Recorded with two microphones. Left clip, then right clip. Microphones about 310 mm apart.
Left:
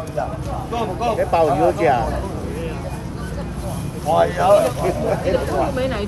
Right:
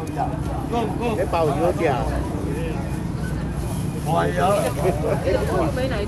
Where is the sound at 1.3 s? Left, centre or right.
Left.